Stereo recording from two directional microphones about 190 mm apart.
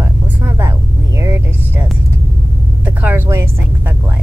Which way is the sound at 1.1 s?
15° right (ahead or behind).